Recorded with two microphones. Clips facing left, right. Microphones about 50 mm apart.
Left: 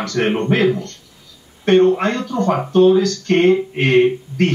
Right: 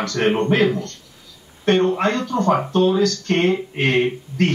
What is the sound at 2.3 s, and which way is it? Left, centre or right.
Speech, right.